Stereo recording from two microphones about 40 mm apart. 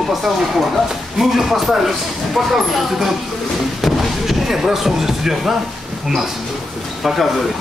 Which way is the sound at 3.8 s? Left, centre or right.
Centre.